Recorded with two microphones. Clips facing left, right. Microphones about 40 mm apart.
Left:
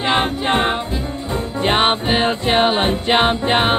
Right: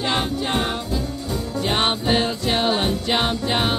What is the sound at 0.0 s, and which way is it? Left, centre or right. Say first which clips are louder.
Music: left 5 dB; left.